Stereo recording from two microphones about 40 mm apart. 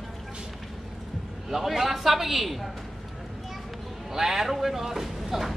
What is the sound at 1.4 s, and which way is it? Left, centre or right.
A man's voice, centre.